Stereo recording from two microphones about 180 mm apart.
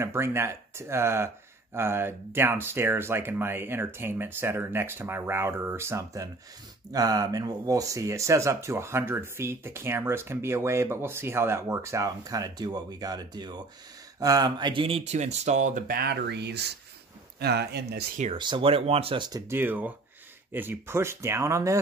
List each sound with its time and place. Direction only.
0.0 s speech: 15° right (ahead or behind); by 18.0 s 65° right (ahead or behind)
18.1 s speech: 40° right (ahead or behind)
18.4 s speech: 30° right (ahead or behind)